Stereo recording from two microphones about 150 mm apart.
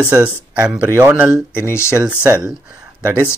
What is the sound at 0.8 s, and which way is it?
Speech, 25° right (ahead or behind).